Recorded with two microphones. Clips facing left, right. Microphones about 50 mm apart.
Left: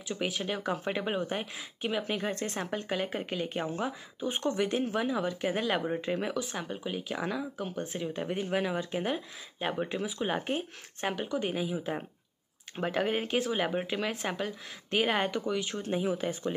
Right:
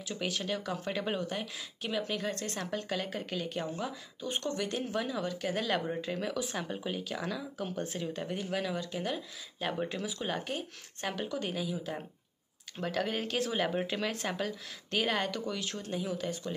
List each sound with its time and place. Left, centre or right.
0.1 s a woman's voice: centre
6.3 s speech: centre
7.1 s a woman's voice: centre
7.6 s a woman's voice: centre; by 9.7 s left
9.7 s speech: centre
10.2 s a woman's voice: left
11.1 s a woman's voice: centre
15.4 s speech: centre
15.8 s a woman's voice: left